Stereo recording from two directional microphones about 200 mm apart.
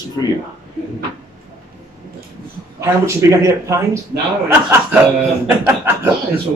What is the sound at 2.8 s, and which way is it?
Speech, 15° right (ahead or behind).